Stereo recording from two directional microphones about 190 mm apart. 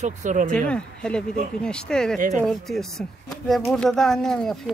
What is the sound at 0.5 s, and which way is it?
Speech, 5° left (ahead or behind).